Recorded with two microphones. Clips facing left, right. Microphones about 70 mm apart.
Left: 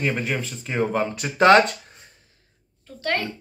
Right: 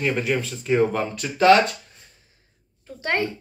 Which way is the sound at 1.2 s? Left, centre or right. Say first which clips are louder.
Even; left.